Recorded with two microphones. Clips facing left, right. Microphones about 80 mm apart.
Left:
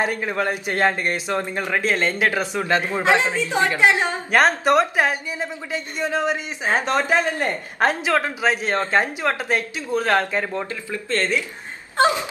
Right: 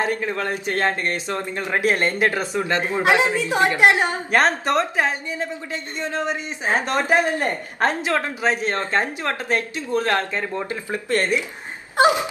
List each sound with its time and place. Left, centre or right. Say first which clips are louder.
0.0 s speech: left 1 dB; centre
1.7 s a woman's voice: right 2 dB; centre
4.3 s speech: left 3 dB; centre
7.0 s speech: right 1 dB; centre
7.8 s speech: left 2 dB; centre
10.7 s speech: right 2 dB; right